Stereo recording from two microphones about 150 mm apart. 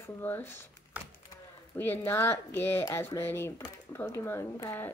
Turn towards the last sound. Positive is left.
turn(degrees=15)  # may be behind; listen again after turning